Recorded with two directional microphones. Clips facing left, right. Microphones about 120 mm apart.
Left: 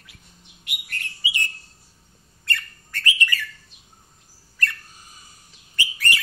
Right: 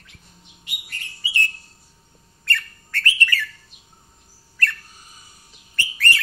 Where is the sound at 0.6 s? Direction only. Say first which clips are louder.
Left 3 dB; 60° left (ahead or behind).